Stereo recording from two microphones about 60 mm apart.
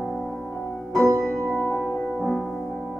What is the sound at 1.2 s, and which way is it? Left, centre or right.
Music, centre.